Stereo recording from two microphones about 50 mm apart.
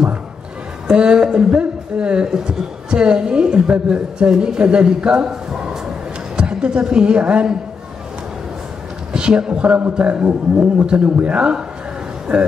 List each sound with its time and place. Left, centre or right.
0.8 s a woman's voice: centre
9.1 s a man's voice: centre